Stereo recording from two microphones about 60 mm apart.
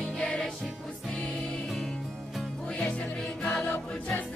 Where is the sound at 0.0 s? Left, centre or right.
Centre.